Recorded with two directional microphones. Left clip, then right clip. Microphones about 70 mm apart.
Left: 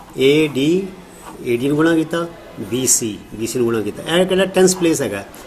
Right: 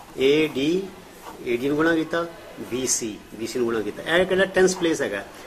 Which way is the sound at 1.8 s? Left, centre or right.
Left.